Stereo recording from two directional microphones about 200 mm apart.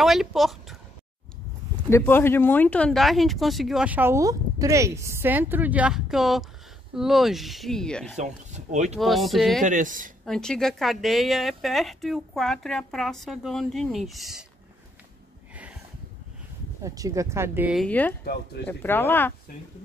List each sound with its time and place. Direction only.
0.0 s speech: centre (ahead or behind)
1.9 s speech: 10° left (ahead or behind)
8.2 s speech: 35° right (ahead or behind)
8.9 s speech: centre (ahead or behind)
9.6 s speech: 40° right (ahead or behind)
10.2 s speech: 5° left (ahead or behind)
15.5 s a sound: 5° right (ahead or behind)
16.8 s speech: 15° right (ahead or behind)
17.8 s speech: 10° left (ahead or behind)
18.2 s speech: 55° left (ahead or behind)
18.7 s speech: 10° left (ahead or behind)